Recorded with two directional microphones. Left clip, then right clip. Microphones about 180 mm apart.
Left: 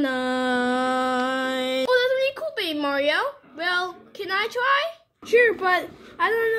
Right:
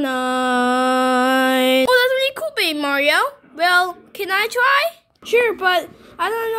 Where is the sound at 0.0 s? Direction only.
25° right (ahead or behind).